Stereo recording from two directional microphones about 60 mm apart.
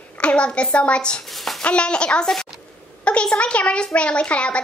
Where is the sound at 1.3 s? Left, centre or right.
Centre.